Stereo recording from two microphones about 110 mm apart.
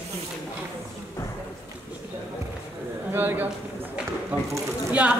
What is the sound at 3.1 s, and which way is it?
Speech, 15° right (ahead or behind).